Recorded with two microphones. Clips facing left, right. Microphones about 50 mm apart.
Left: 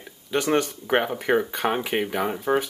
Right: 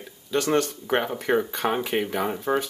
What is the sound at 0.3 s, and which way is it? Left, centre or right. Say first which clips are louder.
Speech: even; centre.